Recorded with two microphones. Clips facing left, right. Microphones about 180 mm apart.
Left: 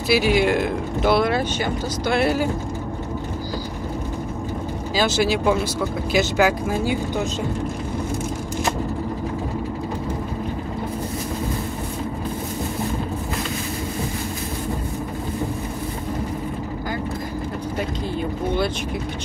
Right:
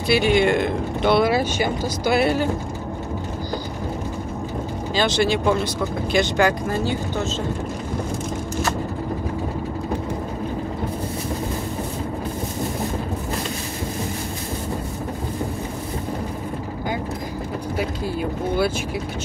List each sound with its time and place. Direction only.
0.1 s speech: 5° left (ahead or behind)
2.2 s speech: 5° left (ahead or behind)
4.9 s speech: 5° left (ahead or behind)